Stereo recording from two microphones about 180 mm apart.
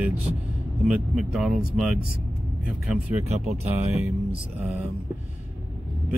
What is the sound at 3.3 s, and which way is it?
Speech, 35° right (ahead or behind).